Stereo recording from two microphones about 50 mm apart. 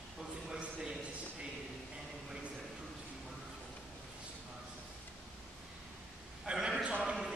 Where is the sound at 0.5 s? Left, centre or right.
Centre.